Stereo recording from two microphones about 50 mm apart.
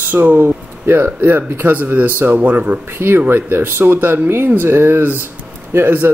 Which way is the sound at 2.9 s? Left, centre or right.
Right.